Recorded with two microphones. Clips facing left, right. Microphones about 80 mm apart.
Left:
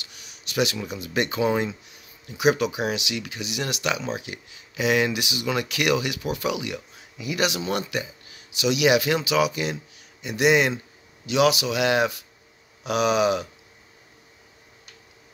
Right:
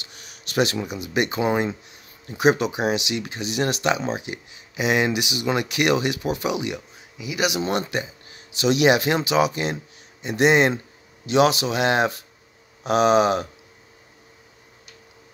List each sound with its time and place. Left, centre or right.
0.0 s a sound: right
0.8 s speech: centre
2.2 s speech: right
7.2 s speech: centre
7.6 s speech: right